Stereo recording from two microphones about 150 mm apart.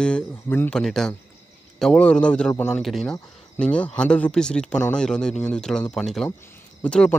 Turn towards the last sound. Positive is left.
turn(degrees=10)  # may be behind; listen again after turning